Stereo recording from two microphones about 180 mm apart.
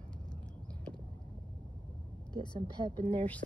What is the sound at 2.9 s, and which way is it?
Speech, 25° right (ahead or behind).